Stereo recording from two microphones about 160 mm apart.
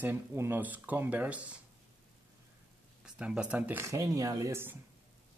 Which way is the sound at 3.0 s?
5° right (ahead or behind).